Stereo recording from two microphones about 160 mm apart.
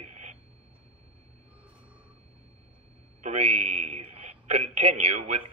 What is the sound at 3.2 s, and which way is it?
A man's voice, 40° right (ahead or behind).